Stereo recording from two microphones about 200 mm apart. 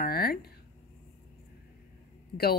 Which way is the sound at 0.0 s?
50° left (ahead or behind).